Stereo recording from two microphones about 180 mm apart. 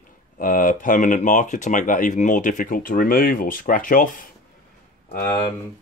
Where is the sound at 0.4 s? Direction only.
50° left (ahead or behind).